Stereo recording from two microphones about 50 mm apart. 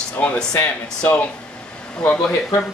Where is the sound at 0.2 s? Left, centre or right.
Left.